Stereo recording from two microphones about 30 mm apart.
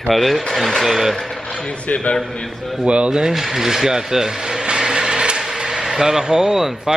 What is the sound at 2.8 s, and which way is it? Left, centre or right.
Speech, right.